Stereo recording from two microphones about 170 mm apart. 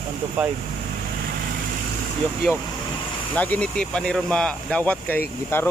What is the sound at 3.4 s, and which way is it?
Speech, 10° left (ahead or behind).